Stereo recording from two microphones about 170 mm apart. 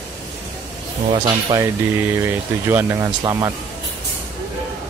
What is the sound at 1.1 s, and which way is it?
Speech, 25° right (ahead or behind).